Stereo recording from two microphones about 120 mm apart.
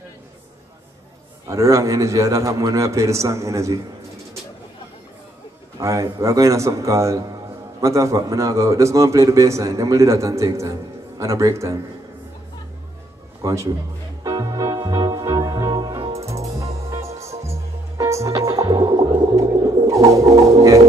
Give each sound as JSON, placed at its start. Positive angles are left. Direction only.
{"t": 1.5, "sound": "a man's voice", "side_deg": -25}
{"t": 5.8, "sound": "a man's voice", "side_deg": -25}
{"t": 13.4, "sound": "a man's voice", "side_deg": -25}
{"t": 14.2, "sound": "organ", "side_deg": -35}
{"t": 16.3, "sound": "music", "side_deg": -25}